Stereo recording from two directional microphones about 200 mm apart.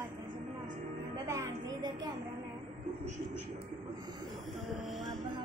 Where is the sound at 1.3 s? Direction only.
15° right (ahead or behind).